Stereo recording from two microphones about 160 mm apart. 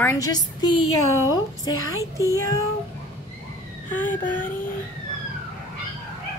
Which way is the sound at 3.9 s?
10° left (ahead or behind).